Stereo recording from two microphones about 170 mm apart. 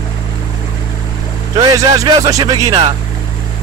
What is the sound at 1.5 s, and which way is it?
Speech, 20° right (ahead or behind).